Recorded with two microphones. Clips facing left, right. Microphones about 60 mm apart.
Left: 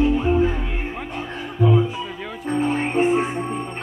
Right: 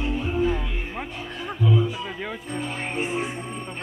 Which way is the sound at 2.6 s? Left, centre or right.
Left.